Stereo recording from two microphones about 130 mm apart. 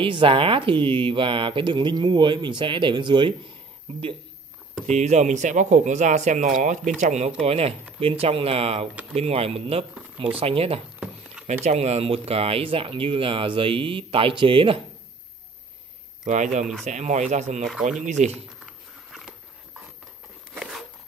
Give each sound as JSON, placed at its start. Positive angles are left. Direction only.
{"t": 0.0, "sound": "speech", "side_deg": -40}
{"t": 4.8, "sound": "speech", "side_deg": -60}
{"t": 7.0, "sound": "speech", "side_deg": -60}
{"t": 11.4, "sound": "speech", "side_deg": -60}
{"t": 16.3, "sound": "speech", "side_deg": -65}